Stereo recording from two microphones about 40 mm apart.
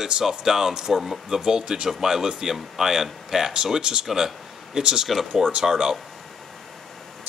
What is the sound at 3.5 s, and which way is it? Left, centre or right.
Speech, right.